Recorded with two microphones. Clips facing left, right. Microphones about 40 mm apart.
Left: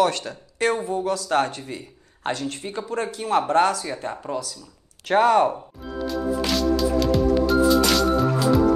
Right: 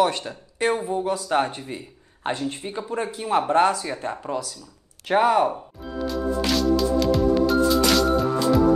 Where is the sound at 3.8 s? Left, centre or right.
Centre.